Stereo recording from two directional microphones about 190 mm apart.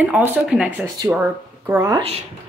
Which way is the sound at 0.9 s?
20° right (ahead or behind).